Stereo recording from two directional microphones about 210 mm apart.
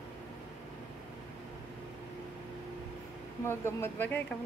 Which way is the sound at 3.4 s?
10° left (ahead or behind).